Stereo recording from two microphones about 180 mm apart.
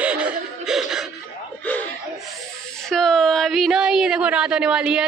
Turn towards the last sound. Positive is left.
turn(degrees=-5)  # may be behind; listen again after turning